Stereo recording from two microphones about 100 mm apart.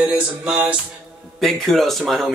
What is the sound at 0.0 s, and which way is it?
Music, 15° right (ahead or behind).